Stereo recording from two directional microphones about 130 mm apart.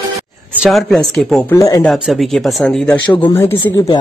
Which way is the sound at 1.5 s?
25° left (ahead or behind).